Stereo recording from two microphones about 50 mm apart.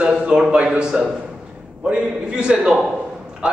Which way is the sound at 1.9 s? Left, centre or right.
Centre.